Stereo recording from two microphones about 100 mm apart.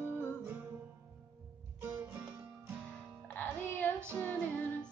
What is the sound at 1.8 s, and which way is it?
Music, 20° right (ahead or behind).